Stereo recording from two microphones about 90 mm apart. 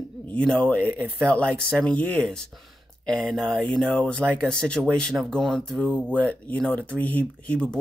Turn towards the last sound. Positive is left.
turn(degrees=15)  # may be behind; listen again after turning